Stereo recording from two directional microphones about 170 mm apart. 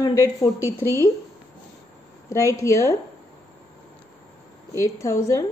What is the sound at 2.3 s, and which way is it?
Speech, 20° left (ahead or behind).